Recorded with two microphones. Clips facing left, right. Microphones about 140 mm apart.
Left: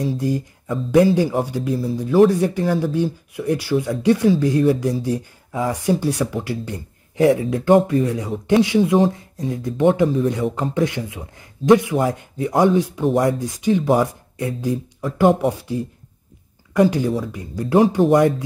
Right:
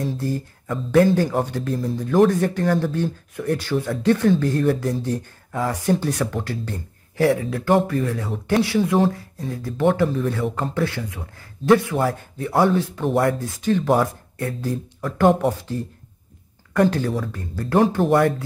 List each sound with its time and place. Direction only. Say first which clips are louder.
0.1 s speech: left 4 dB; 15° left (ahead or behind)